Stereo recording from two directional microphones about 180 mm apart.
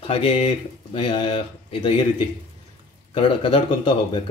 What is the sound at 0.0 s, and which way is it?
Speech, 30° left (ahead or behind).